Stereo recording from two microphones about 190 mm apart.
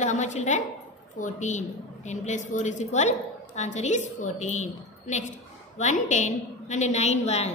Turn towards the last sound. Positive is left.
turn(degrees=35)  # may be behind; listen again after turning